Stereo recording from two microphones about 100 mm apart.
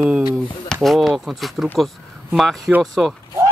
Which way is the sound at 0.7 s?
Centre (ahead or behind).